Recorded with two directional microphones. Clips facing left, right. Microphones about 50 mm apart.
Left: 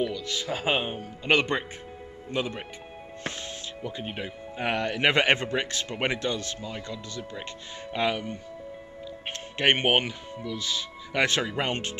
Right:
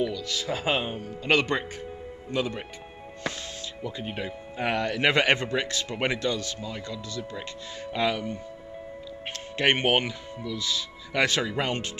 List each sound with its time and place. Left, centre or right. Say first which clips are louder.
0.0 s speech: right 1 dB; left
0.4 s speech: even; left
4.0 s speech: right 1 dB; centre